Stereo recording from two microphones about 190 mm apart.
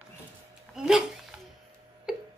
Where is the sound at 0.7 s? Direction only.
5° right (ahead or behind).